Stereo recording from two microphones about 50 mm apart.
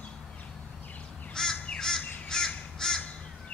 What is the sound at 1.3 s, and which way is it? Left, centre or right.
Crow, centre.